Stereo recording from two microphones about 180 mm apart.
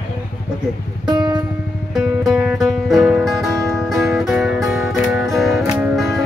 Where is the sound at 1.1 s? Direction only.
25° right (ahead or behind).